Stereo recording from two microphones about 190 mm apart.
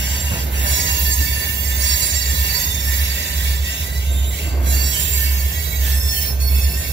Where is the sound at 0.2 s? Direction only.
75° right (ahead or behind).